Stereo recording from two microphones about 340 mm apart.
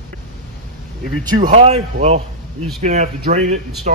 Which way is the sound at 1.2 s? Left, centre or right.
Centre.